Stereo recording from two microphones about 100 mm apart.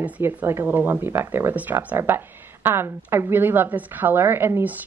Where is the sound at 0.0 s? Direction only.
20° right (ahead or behind).